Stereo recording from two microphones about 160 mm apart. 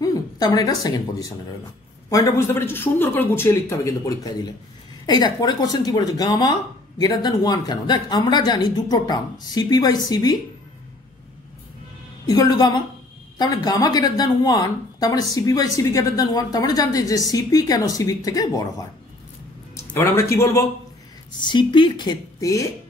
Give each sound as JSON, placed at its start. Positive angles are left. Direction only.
{"t": 0.0, "sound": "speech", "side_deg": 25}
{"t": 12.3, "sound": "speech", "side_deg": 25}
{"t": 21.4, "sound": "speech", "side_deg": 30}